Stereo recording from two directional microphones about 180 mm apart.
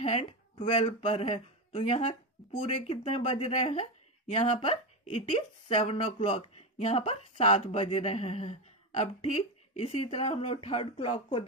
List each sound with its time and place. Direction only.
0.0 s speech: 40° left (ahead or behind)